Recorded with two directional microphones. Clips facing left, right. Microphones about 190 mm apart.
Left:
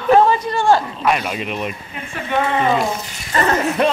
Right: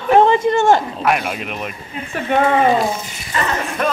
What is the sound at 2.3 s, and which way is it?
Speech, 55° right (ahead or behind).